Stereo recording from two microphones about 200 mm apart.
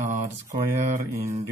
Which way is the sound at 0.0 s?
35° right (ahead or behind).